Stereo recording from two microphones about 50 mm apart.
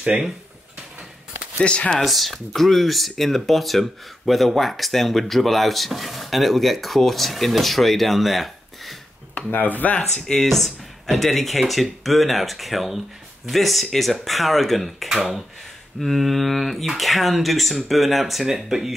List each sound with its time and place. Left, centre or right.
0.1 s speech: centre
1.6 s speech: left
2.0 s speech: centre
9.5 s speech: left
10.2 s speech: centre